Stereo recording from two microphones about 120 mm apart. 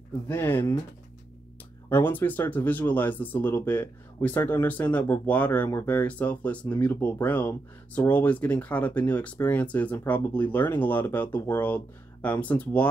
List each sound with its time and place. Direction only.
0.3 s speech: 20° left (ahead or behind)
1.9 s speech: 15° left (ahead or behind)